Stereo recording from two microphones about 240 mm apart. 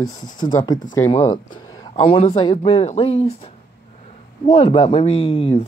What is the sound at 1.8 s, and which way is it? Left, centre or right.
Speech, left.